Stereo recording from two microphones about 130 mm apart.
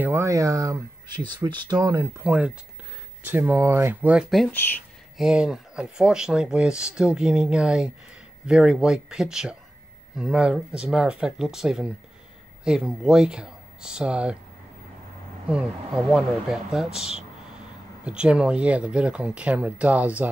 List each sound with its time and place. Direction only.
0.0 s speech: 20° right (ahead or behind)
2.1 s speech: 10° right (ahead or behind)
4.5 s speech: 15° left (ahead or behind)
5.1 s speech: 5° right (ahead or behind)
15.5 s speech: 5° right (ahead or behind)